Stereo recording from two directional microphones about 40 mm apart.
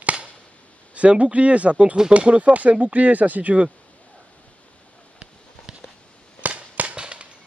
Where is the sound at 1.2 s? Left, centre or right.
Right.